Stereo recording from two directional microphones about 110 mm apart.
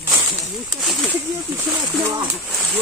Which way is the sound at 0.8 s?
Centre (ahead or behind).